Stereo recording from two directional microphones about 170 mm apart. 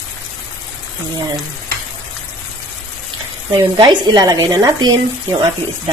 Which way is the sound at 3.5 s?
30° right (ahead or behind).